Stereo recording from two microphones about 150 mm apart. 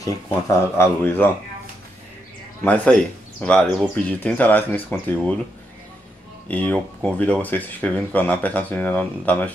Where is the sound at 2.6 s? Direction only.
5° left (ahead or behind).